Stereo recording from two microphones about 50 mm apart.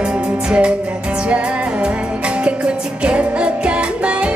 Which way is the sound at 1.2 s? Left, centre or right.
Right.